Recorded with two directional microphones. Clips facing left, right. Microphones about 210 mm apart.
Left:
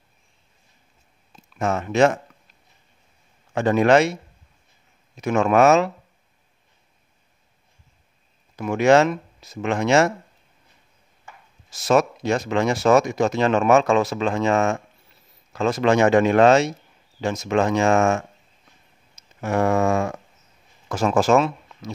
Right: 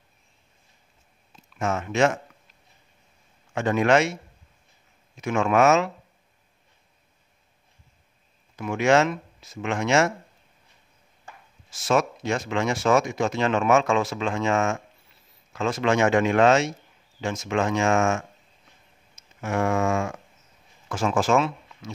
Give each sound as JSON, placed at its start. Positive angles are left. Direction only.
{"t": 1.6, "sound": "speech", "side_deg": 35}
{"t": 3.5, "sound": "speech", "side_deg": 35}
{"t": 5.2, "sound": "speech", "side_deg": 40}
{"t": 8.5, "sound": "speech", "side_deg": 40}
{"t": 11.7, "sound": "speech", "side_deg": 40}